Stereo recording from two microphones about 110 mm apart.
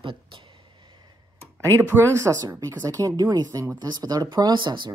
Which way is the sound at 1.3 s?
25° right (ahead or behind).